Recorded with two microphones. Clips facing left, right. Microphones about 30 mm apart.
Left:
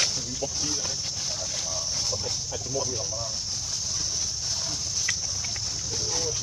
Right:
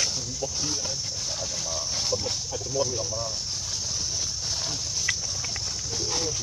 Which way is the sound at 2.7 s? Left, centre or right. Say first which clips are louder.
Right 4 dB; centre.